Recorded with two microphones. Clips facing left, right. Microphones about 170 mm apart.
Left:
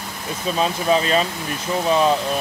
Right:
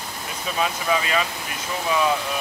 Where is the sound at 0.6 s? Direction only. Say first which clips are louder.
Left 4 dB; 30° left (ahead or behind).